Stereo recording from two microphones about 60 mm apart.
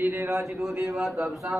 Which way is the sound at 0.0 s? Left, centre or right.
Right.